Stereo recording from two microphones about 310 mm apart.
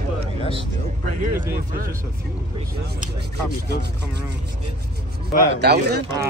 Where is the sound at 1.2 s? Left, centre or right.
Right.